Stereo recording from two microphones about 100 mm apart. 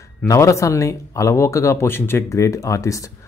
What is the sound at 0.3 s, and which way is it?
Speech, 30° left (ahead or behind).